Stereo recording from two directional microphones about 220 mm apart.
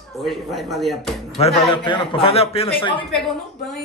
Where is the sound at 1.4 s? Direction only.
25° left (ahead or behind).